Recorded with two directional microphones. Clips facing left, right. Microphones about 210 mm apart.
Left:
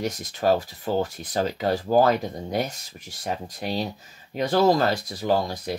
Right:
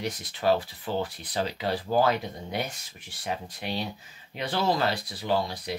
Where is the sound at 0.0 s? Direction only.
45° left (ahead or behind).